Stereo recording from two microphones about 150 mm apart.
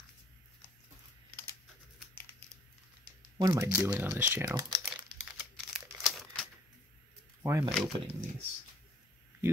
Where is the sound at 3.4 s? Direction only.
25° right (ahead or behind).